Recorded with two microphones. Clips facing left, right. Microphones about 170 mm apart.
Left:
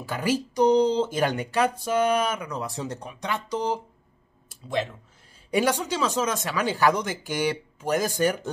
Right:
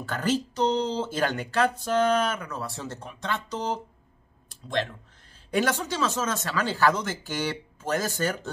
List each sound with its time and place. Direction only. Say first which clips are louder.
0.0 s speech: left 1 dB; 10° left (ahead or behind)
5.5 s speech: left 2 dB; 15° left (ahead or behind)